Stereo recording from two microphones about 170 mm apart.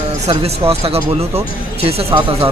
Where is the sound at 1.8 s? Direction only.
35° right (ahead or behind).